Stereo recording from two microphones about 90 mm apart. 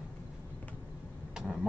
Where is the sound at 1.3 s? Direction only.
5° right (ahead or behind).